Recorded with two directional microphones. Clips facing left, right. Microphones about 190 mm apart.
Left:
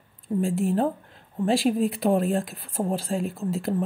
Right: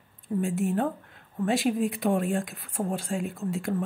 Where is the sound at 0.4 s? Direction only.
35° left (ahead or behind).